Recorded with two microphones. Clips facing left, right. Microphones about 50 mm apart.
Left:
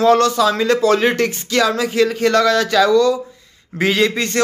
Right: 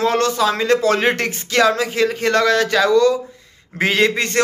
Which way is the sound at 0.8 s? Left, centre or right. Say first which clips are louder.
Left 2 dB; right.